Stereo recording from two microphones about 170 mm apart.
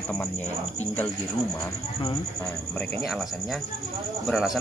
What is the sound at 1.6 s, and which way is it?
Speech, 25° left (ahead or behind).